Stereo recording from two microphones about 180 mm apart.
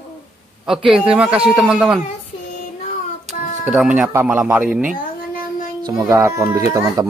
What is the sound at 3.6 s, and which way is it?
Speech, 5° right (ahead or behind).